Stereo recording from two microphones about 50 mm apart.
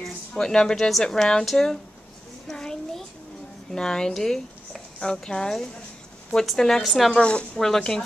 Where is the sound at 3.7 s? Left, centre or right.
Centre.